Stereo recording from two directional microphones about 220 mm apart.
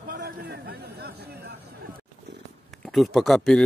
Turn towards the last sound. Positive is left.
turn(degrees=0)  # may be behind; listen again after turning